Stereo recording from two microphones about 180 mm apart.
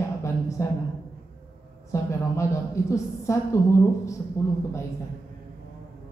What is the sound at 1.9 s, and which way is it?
Speech, 15° left (ahead or behind).